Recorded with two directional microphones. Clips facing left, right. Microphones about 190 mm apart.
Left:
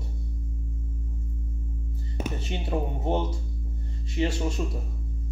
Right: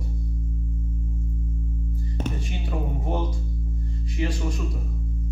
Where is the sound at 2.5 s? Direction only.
25° left (ahead or behind).